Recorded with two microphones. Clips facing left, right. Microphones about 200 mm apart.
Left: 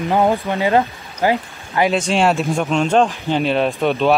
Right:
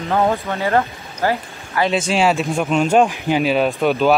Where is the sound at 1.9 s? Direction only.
Centre (ahead or behind).